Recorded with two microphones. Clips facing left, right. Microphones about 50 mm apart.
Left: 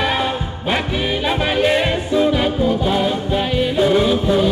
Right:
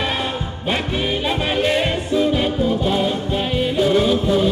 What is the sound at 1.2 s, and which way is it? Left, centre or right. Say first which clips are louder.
Music: left 4 dB; centre.